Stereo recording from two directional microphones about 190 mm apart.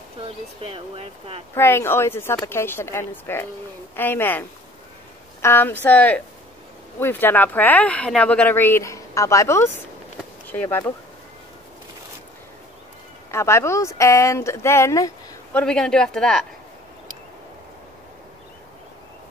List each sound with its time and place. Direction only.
0.6 s speech: 30° right (ahead or behind)
1.5 s speech: 15° left (ahead or behind)
13.3 s speech: 15° left (ahead or behind)
15.6 s speech: 5° left (ahead or behind)